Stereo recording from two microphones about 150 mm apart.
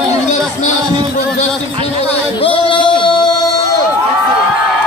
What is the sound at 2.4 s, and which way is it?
Music, 35° left (ahead or behind).